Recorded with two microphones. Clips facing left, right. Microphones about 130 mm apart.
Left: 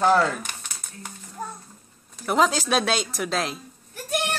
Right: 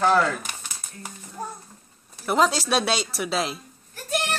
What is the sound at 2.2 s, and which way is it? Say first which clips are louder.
Speech: even; centre (ahead or behind).